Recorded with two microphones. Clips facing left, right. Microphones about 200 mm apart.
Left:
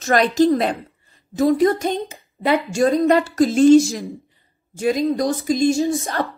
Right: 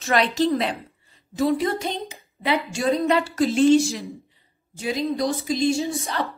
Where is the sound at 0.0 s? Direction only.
45° left (ahead or behind).